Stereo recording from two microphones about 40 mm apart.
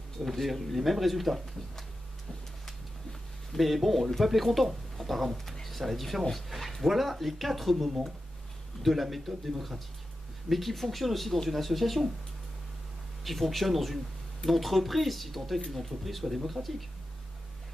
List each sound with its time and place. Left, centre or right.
0.2 s speech: centre
2.6 s a sound: centre
4.2 s speech: centre
13.2 s speech: centre
16.6 s speech: right